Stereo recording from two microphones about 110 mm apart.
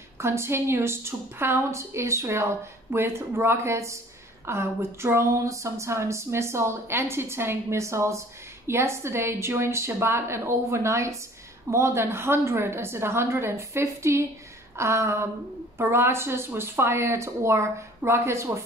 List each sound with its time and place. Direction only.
0.2 s a woman's voice: 25° right (ahead or behind)